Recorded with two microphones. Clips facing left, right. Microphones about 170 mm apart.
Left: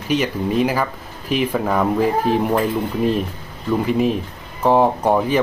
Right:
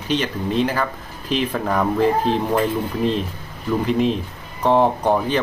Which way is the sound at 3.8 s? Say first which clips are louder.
Even; 5° left (ahead or behind).